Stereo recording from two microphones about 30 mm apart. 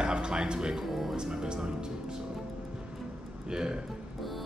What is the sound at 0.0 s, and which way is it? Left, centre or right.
Music, right.